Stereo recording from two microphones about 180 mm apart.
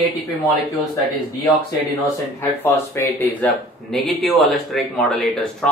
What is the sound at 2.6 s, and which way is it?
Speech, 15° left (ahead or behind).